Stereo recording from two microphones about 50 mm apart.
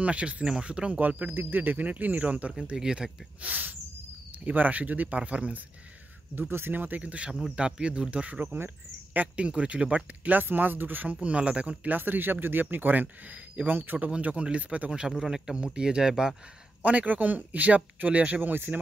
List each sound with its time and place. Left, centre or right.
0.0 s speech: right
2.6 s speech: centre
3.4 s speech: right
6.5 s speech: right
7.0 s speech: right
9.5 s speech: right
10.4 s speech: right
11.1 s speech: right
12.0 s speech: right
13.9 s speech: right
14.9 s speech: centre
16.8 s speech: right
18.5 s speech: right